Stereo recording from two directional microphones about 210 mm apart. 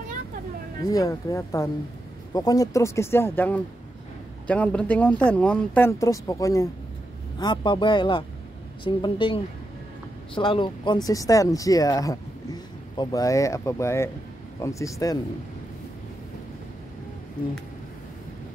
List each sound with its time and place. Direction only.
0.8 s speech: 15° left (ahead or behind)